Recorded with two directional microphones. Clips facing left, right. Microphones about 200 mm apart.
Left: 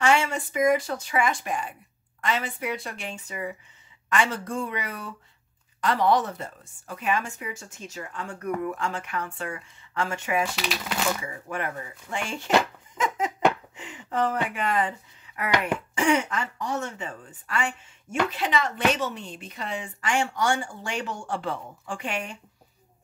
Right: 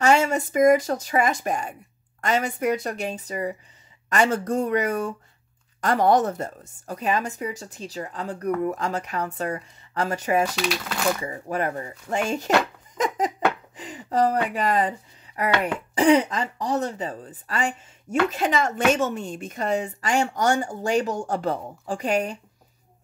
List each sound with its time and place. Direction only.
0.0 s a woman's voice: 40° right (ahead or behind)
10.5 s speech: 5° left (ahead or behind)
11.2 s a woman's voice: 35° right (ahead or behind)
12.9 s a sound: 40° right (ahead or behind)
13.7 s a woman's voice: 35° right (ahead or behind)